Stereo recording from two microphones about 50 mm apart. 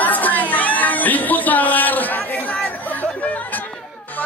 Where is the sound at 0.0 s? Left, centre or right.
Left.